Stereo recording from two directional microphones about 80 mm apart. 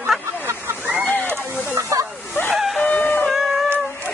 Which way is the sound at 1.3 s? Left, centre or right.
Right.